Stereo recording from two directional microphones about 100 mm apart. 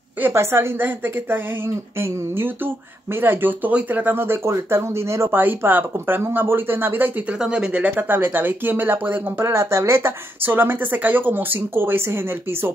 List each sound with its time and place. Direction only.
0.2 s a woman's voice: 25° right (ahead or behind)